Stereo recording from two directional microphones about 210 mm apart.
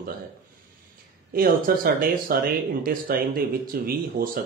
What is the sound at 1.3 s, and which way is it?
Speech, 45° right (ahead or behind).